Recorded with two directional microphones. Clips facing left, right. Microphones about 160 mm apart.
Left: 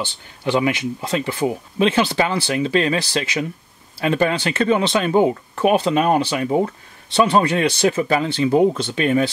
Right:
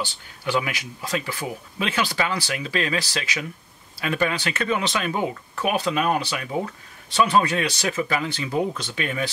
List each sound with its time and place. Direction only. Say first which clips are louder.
0.0 s speech: left 5 dB; 25° left (ahead or behind)